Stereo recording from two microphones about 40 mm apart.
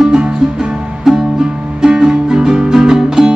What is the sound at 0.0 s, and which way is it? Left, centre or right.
Music, right.